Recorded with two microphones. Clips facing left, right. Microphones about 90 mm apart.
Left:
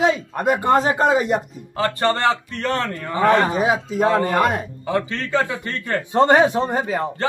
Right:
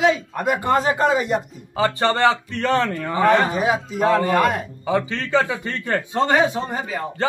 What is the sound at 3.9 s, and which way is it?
Speech, 15° left (ahead or behind).